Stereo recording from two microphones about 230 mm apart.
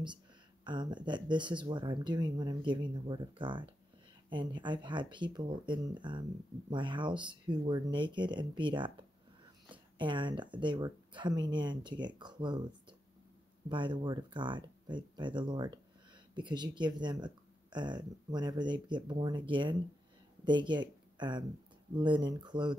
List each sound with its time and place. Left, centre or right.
0.7 s speech: centre
9.9 s speech: right
13.7 s speech: centre